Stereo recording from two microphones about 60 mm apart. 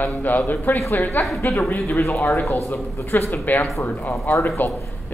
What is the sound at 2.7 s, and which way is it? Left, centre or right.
Speech, left.